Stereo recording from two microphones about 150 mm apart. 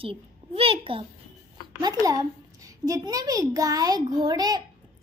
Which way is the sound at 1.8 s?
25° right (ahead or behind).